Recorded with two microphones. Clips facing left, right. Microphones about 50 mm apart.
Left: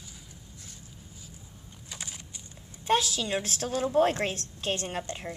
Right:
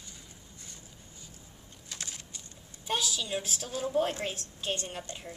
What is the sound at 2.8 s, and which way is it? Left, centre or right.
Speech, left.